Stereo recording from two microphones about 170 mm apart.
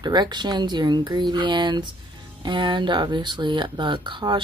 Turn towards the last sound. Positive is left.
turn(degrees=-30)  # may be behind; listen again after turning